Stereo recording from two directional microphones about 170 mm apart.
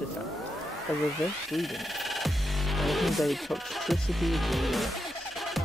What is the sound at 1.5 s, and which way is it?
Music, centre (ahead or behind).